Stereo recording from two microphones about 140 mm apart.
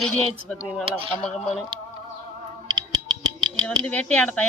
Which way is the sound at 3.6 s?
10° left (ahead or behind).